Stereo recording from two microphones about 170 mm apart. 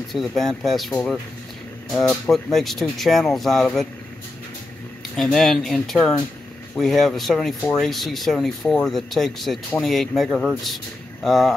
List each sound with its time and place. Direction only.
0.1 s speech: centre (ahead or behind)
5.1 s speech: centre (ahead or behind)